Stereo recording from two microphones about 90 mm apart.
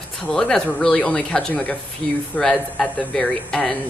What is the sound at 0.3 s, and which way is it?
Speech, 5° left (ahead or behind).